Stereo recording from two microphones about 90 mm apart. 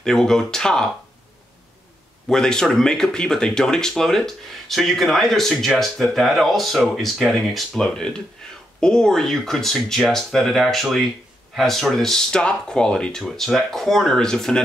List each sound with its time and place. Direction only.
0.0 s speech: 5° left (ahead or behind)
2.2 s speech: 5° left (ahead or behind)